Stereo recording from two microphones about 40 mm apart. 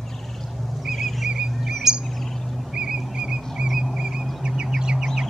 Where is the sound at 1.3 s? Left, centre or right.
Centre.